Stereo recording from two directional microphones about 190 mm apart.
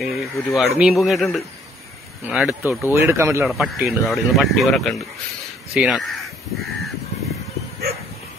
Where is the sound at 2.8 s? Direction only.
15° right (ahead or behind).